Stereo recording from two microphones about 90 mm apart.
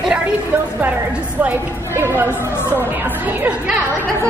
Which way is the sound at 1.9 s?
30° right (ahead or behind).